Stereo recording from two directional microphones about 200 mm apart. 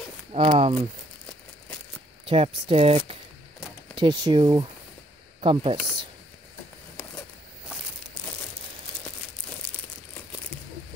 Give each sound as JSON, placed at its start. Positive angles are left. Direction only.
{"t": 0.3, "sound": "speech", "side_deg": -30}
{"t": 2.2, "sound": "speech", "side_deg": -30}